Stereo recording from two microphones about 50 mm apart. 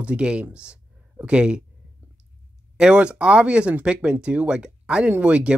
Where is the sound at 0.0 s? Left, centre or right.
Right.